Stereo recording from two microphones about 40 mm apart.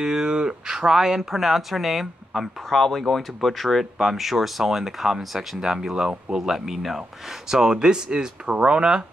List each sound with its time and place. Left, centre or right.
0.0 s speech: centre